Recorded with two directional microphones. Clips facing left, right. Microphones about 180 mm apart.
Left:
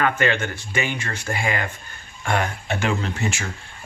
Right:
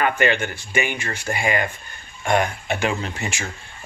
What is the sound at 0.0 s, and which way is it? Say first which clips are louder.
Speech: right 1 dB; 15° right (ahead or behind).